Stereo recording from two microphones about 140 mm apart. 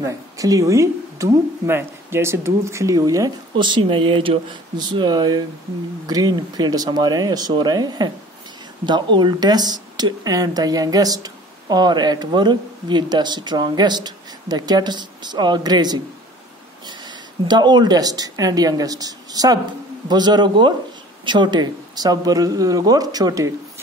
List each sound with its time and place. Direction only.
0.0 s speech: 25° right (ahead or behind)